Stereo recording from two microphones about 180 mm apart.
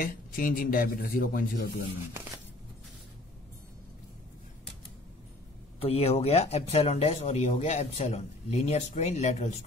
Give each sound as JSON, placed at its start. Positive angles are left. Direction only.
{"t": 0.0, "sound": "speech", "side_deg": 50}
{"t": 5.8, "sound": "speech", "side_deg": 35}